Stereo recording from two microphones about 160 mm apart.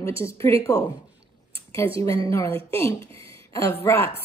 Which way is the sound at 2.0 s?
20° left (ahead or behind).